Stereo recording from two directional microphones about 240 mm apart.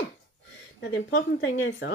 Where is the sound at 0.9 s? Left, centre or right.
Left.